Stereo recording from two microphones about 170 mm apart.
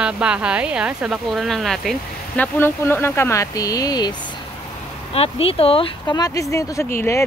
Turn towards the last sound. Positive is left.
turn(degrees=15)  # may be behind; listen again after turning